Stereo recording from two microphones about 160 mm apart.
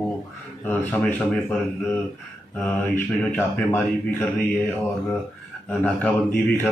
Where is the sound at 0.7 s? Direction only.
10° left (ahead or behind).